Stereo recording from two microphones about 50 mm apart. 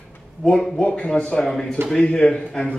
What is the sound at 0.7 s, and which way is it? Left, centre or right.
Speech, left.